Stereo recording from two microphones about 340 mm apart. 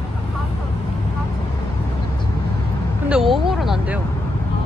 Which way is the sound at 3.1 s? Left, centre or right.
Centre.